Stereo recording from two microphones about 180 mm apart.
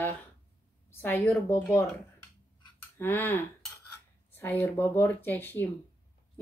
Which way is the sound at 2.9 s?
10° left (ahead or behind).